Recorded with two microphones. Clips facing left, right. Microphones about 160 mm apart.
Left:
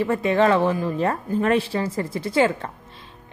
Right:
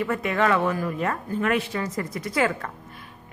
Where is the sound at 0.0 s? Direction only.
30° left (ahead or behind).